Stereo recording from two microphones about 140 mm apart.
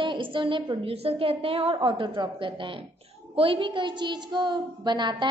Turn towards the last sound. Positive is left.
turn(degrees=-30)  # may be behind; listen again after turning